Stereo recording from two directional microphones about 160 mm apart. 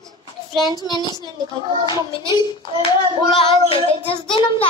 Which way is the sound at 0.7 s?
25° left (ahead or behind).